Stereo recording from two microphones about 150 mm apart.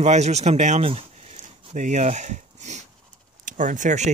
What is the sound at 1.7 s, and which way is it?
Speech, 55° right (ahead or behind).